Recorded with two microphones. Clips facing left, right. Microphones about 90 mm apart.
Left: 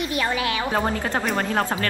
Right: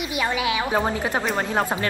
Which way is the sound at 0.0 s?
15° right (ahead or behind).